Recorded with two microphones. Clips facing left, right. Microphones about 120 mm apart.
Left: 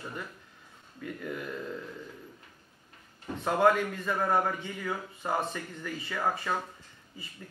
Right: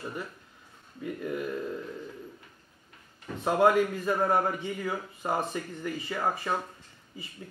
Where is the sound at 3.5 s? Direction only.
5° right (ahead or behind).